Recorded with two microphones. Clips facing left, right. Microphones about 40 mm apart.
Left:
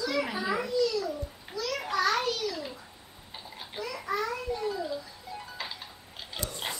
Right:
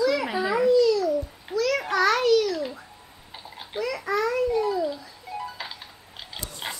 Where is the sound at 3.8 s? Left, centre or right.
Right.